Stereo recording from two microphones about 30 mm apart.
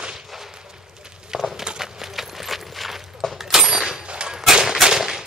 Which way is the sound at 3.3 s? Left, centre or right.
Centre.